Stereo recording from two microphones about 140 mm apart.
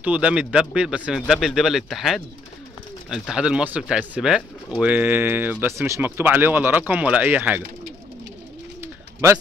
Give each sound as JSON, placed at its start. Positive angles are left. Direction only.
{"t": 0.0, "sound": "speech", "side_deg": -10}
{"t": 8.8, "sound": "bird", "side_deg": -20}